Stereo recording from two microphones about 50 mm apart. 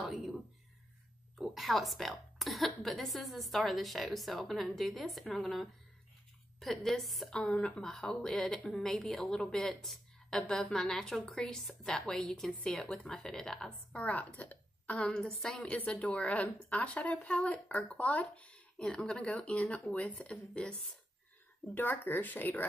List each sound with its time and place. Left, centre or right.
0.0 s a sound: centre
1.5 s a woman's voice: centre
7.2 s a woman's voice: centre
13.7 s a woman's voice: left
15.0 s a woman's voice: centre
15.6 s speech: left
18.8 s speech: centre
21.7 s speech: left